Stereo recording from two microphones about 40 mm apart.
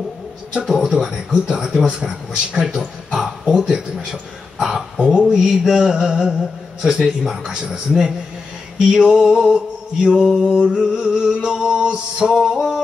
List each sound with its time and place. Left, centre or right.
0.7 s male singing: centre
2.0 s speech: centre
5.2 s music: centre
5.7 s male singing: centre
12.3 s music: centre